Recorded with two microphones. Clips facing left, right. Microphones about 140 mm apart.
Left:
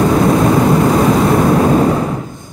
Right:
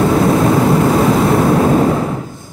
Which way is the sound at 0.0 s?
40° left (ahead or behind).